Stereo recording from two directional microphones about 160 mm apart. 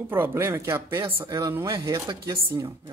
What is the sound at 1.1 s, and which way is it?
Speech, 25° right (ahead or behind).